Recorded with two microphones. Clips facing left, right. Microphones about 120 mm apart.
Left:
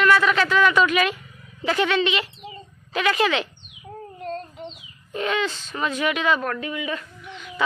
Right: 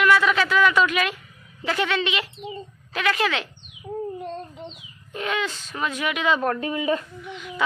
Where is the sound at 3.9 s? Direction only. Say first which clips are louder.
Right 8 dB; 10° right (ahead or behind).